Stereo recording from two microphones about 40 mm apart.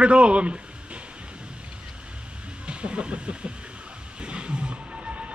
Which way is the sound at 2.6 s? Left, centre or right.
Right.